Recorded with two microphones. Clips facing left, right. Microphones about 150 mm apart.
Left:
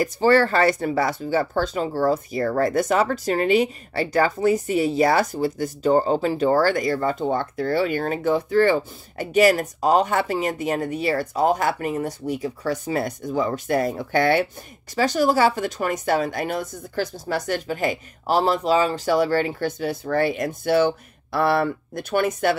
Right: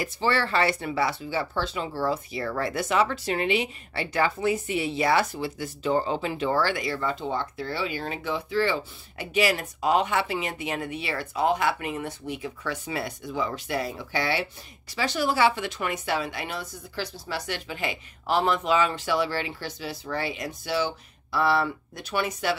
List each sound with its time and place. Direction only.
0.0 s speech: 45° left (ahead or behind)